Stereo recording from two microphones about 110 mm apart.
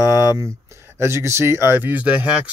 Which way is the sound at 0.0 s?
25° right (ahead or behind).